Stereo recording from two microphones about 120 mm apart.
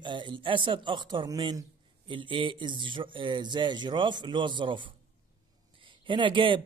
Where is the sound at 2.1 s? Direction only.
45° right (ahead or behind).